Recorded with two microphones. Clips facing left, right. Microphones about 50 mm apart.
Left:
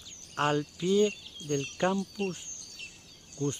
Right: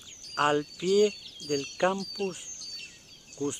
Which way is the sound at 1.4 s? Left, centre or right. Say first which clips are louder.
Right 1 dB; left.